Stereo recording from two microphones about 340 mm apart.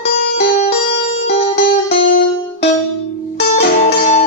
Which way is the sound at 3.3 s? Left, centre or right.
Left.